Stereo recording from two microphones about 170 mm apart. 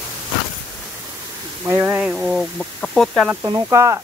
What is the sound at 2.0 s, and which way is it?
Speech, centre (ahead or behind).